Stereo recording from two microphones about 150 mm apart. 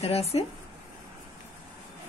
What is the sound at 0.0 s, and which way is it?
Speech, 40° left (ahead or behind).